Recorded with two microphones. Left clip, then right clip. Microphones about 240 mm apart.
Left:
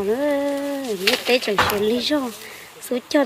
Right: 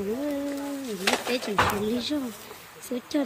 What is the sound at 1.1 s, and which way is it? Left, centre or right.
Speech, right.